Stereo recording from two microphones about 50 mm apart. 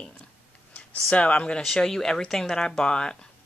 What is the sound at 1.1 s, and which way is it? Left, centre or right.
Speech, left.